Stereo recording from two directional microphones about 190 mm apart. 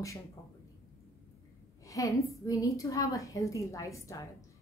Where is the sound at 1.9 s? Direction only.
15° left (ahead or behind).